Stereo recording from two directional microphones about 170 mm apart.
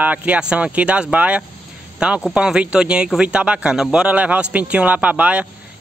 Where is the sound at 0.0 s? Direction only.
10° right (ahead or behind).